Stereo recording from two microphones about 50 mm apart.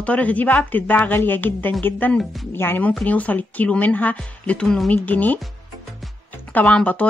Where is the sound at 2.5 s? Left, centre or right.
Left.